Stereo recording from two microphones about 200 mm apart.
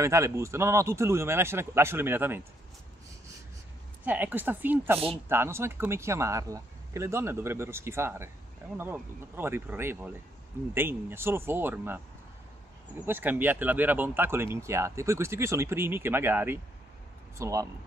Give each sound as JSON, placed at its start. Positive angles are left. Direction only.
{"t": 0.0, "sound": "speech", "side_deg": -15}
{"t": 4.0, "sound": "speech", "side_deg": -10}
{"t": 13.0, "sound": "speech", "side_deg": -10}